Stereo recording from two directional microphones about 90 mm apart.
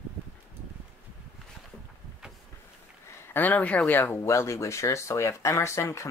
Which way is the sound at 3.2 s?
20° left (ahead or behind).